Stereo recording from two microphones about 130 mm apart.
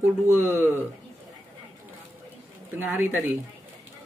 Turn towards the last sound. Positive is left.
turn(degrees=-15)  # may be behind; listen again after turning